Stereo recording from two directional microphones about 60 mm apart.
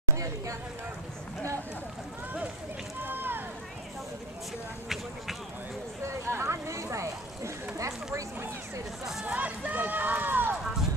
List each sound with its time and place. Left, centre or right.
3.0 s boat: right
6.0 s a sound: right
9.2 s run: right